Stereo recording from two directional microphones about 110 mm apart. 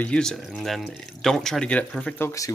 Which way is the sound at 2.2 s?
30° left (ahead or behind).